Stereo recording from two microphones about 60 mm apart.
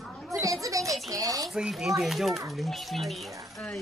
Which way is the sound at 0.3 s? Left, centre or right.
Right.